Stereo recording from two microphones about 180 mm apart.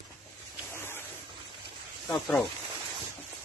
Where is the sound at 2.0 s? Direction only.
Centre (ahead or behind).